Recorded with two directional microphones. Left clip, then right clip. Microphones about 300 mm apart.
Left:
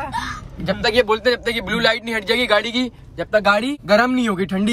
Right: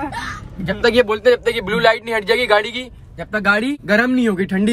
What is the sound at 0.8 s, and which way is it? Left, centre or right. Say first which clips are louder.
Speech: right 3 dB; centre.